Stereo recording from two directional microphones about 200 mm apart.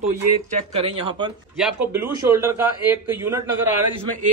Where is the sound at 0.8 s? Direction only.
25° right (ahead or behind).